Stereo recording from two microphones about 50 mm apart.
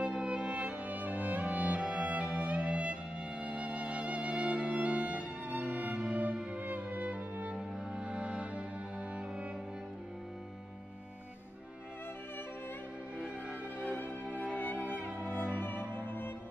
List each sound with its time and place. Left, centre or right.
0.0 s music: centre
4.1 s violin: right
6.5 s music: right
7.5 s music: centre
13.2 s music: centre
14.5 s music: left
14.8 s music: right
15.5 s music: left